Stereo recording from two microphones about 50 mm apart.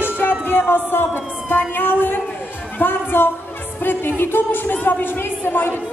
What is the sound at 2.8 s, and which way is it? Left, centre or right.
Music, left.